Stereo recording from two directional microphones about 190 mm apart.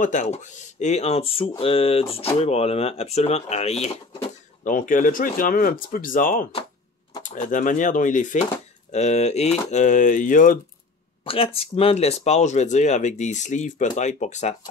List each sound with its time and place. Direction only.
0.0 s speech: 40° left (ahead or behind)
4.6 s speech: 45° left (ahead or behind)
11.2 s speech: 30° left (ahead or behind)